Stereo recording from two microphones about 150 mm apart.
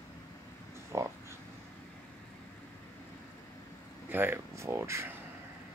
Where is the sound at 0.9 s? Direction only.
20° right (ahead or behind).